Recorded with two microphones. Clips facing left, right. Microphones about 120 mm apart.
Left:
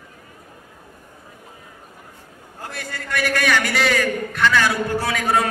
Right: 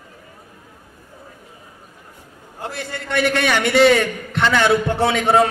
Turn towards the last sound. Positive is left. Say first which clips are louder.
# right 5 dB
turn(degrees=-25)  # may be behind; listen again after turning